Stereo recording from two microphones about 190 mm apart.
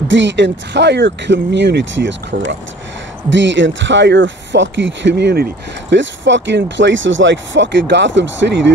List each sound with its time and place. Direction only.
0.1 s speech: 70° right (ahead or behind)